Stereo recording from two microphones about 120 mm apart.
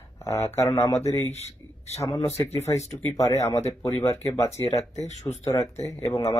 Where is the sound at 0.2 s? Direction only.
25° left (ahead or behind).